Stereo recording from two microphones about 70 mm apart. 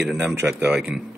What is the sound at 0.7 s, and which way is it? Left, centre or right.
Speech, centre.